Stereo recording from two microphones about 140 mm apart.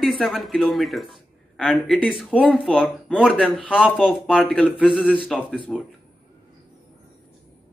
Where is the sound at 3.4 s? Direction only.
5° left (ahead or behind).